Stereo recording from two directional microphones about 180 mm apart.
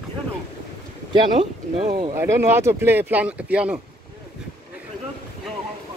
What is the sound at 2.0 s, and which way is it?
Speech, 20° right (ahead or behind).